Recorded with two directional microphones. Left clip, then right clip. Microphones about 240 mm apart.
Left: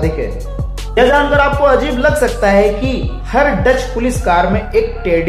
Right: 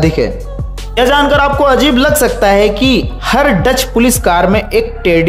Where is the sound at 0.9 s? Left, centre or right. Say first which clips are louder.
Right 1 dB; right.